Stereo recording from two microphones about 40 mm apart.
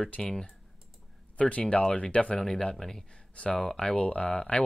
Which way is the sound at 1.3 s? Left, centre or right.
Left.